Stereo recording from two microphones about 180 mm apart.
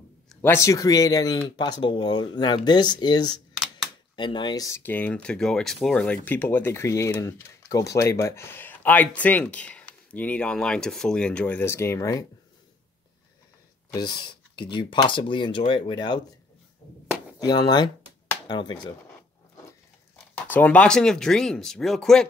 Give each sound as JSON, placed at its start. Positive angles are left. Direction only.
{"t": 0.3, "sound": "speech", "side_deg": 10}
{"t": 13.9, "sound": "speech", "side_deg": 25}
{"t": 17.4, "sound": "speech", "side_deg": 20}
{"t": 20.4, "sound": "speech", "side_deg": 10}